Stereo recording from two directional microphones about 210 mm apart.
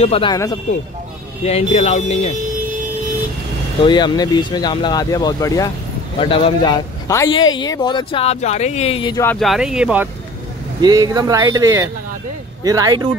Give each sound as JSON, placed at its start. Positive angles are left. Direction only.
{"t": 0.0, "sound": "speech", "side_deg": 25}
{"t": 1.4, "sound": "speech", "side_deg": 30}
{"t": 3.8, "sound": "speech", "side_deg": 20}
{"t": 9.2, "sound": "speech", "side_deg": 5}
{"t": 10.8, "sound": "speech", "side_deg": -15}